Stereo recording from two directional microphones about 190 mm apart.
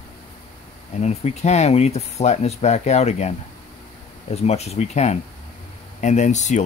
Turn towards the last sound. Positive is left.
turn(degrees=40)  # may be behind; listen again after turning